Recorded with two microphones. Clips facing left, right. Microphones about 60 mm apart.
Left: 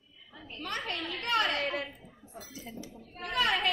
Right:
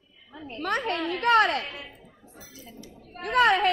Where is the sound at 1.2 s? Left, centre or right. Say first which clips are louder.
Right 9 dB; right.